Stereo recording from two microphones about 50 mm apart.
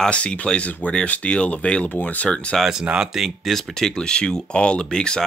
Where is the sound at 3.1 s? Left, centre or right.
Centre.